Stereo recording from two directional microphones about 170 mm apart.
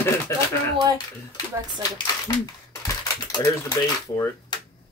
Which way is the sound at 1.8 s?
20° left (ahead or behind).